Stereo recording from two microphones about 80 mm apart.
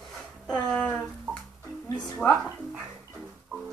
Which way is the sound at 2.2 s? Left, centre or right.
Centre.